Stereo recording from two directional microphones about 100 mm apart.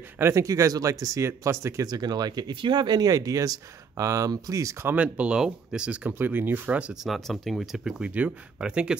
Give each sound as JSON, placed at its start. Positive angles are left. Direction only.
{"t": 0.2, "sound": "speech", "side_deg": -30}
{"t": 1.9, "sound": "speech", "side_deg": -40}
{"t": 4.8, "sound": "speech", "side_deg": -15}
{"t": 7.1, "sound": "speech", "side_deg": 0}